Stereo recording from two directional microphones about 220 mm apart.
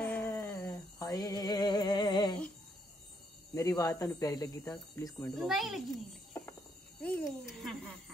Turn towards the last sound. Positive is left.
turn(degrees=5)  # may be behind; listen again after turning